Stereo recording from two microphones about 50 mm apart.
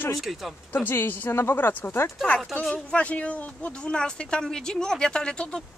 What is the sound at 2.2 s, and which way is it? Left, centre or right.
Speech, left.